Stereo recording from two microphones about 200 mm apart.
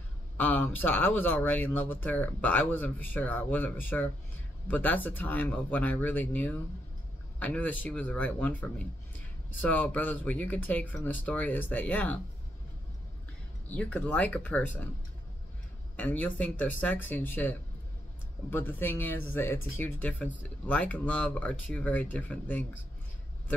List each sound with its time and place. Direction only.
0.4 s speech: 10° left (ahead or behind)
13.7 s speech: 5° left (ahead or behind)
16.0 s speech: 5° left (ahead or behind)